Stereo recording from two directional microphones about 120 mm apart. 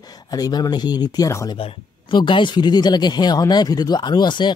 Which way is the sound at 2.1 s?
40° left (ahead or behind).